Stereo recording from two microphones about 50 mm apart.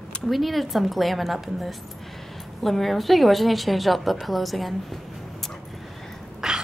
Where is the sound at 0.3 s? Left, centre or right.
Centre.